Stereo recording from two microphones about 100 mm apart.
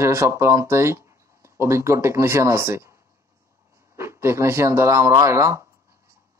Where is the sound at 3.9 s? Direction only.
25° right (ahead or behind).